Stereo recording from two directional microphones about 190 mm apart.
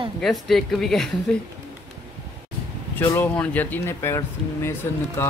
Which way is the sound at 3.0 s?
10° left (ahead or behind).